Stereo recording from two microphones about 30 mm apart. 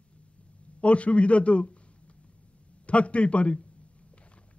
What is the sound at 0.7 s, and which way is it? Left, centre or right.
A man's voice, left.